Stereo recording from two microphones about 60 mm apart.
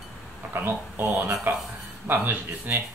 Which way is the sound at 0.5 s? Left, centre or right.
Right.